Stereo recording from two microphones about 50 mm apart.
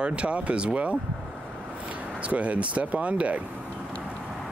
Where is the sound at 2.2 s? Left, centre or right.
Right.